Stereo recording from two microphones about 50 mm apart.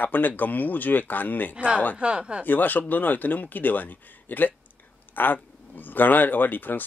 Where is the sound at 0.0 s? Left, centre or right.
Left.